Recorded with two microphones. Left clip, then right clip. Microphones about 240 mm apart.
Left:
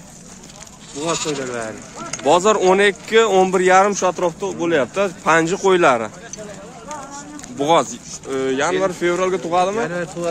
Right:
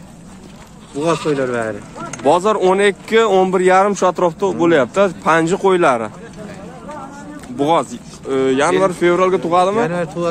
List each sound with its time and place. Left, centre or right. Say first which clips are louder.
1.0 s speech: right 5 dB; right
2.2 s speech: right 1 dB; centre
7.5 s speech: even; centre
9.8 s speech: right 5 dB; right